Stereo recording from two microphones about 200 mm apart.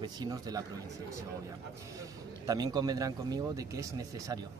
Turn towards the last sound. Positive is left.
turn(degrees=-15)  # may be behind; listen again after turning